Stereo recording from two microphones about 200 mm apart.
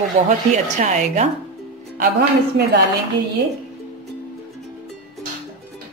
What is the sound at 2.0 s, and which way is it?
Speech, 55° right (ahead or behind).